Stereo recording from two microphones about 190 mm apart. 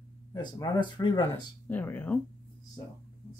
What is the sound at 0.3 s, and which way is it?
Speech, 20° left (ahead or behind).